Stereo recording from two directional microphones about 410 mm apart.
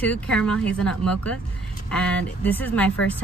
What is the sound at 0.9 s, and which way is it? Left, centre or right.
Speech, left.